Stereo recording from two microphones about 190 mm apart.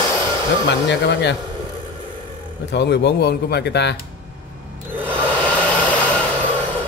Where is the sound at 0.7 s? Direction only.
65° left (ahead or behind).